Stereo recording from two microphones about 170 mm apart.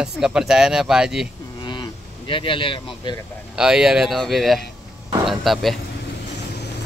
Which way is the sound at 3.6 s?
5° right (ahead or behind).